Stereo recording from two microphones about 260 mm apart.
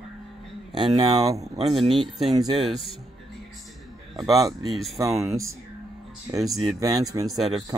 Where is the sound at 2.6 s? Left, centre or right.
Centre.